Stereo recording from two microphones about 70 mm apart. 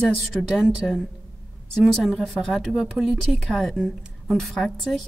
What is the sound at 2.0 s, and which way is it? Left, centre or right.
A woman's voice, centre.